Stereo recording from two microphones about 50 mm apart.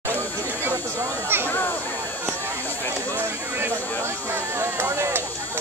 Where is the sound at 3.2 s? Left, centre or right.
Right.